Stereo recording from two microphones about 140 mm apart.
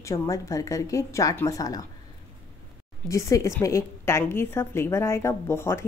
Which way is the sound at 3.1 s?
20° left (ahead or behind).